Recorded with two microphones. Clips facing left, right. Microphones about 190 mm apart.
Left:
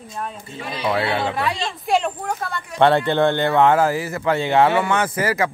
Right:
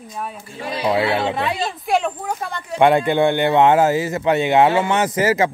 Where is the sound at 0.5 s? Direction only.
25° right (ahead or behind).